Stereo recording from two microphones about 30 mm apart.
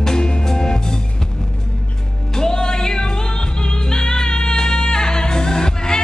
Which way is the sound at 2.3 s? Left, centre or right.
Left.